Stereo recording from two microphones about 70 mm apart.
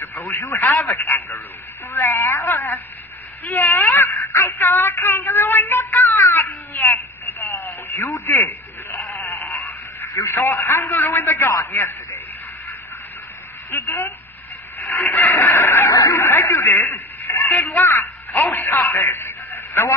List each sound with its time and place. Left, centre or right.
0.0 s radio: left
0.8 s speech: left
1.9 s a sound: left
6.1 s cat: left
7.6 s radio: left
11.7 s a man's voice: left
13.7 s speech: left
15.1 s chicken: left
16.1 s a sound: left
17.6 s a man's voice: left
18.5 s radio: left